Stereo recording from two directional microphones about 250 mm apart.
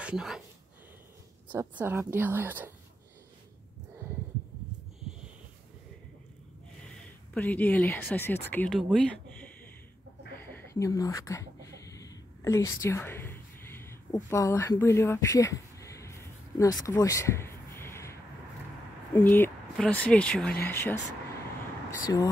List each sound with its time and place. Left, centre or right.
0.0 s speech: centre
1.5 s a woman's voice: centre
7.3 s speech: centre
8.9 s a sound: centre
10.5 s a sound: centre
19.1 s speech: centre
22.0 s speech: centre